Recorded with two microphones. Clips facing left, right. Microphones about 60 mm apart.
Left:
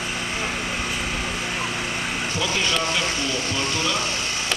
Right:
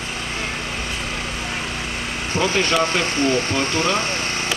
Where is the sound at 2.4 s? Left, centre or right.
Right.